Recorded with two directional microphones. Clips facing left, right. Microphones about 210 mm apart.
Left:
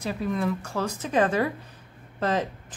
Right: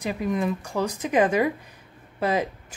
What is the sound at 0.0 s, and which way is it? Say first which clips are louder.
A woman's voice: right 2 dB; 15° right (ahead or behind).